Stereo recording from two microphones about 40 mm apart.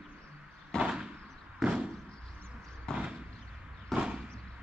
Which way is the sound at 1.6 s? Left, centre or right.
Centre.